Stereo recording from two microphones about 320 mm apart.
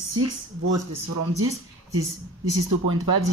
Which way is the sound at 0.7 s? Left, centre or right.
Right.